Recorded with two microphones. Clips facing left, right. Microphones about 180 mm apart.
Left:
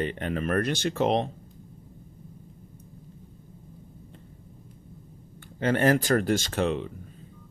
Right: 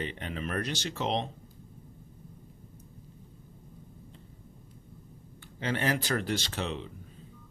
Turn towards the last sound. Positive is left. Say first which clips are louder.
# left 8 dB
turn(degrees=55)  # may be behind; listen again after turning